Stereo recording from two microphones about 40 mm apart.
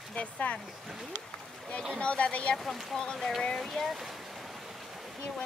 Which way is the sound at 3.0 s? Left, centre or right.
Centre.